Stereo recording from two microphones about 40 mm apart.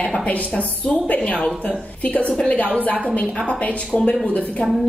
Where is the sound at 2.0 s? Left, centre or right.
Left.